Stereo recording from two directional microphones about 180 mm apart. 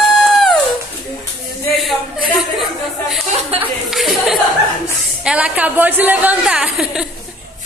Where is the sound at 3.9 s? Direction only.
Centre (ahead or behind).